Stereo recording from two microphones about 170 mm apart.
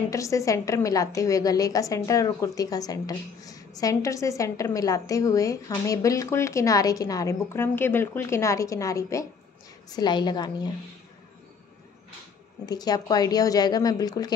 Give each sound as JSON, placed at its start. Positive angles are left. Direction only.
{"t": 0.1, "sound": "a woman's voice", "side_deg": 20}
{"t": 12.6, "sound": "a woman's voice", "side_deg": 25}